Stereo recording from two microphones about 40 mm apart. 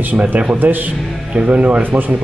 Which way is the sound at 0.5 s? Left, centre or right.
Right.